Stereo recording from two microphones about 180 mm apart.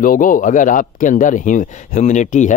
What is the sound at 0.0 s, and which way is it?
Speech, 50° left (ahead or behind).